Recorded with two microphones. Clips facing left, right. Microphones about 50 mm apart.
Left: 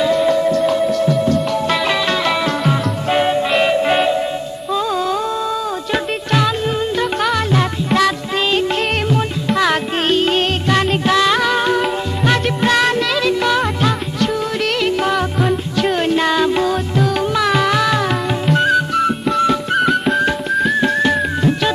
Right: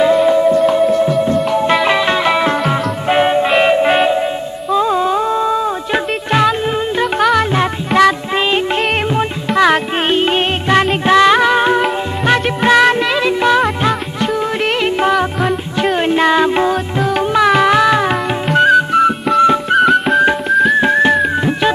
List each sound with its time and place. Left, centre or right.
0.0 s music: centre
4.7 s humming: right
7.5 s music: right
19.8 s music: centre
20.8 s music: right